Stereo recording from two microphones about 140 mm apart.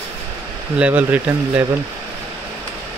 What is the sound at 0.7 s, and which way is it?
Speech, 10° right (ahead or behind).